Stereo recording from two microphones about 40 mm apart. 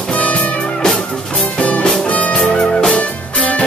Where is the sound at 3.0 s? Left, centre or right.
Left.